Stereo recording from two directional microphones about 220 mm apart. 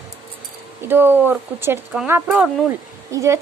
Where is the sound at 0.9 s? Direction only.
10° right (ahead or behind).